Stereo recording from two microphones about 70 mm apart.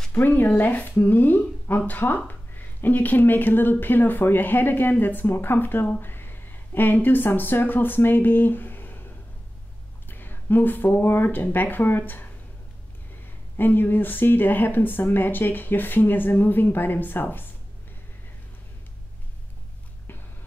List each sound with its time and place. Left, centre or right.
0.1 s speech: left
10.0 s speech: left
13.6 s speech: left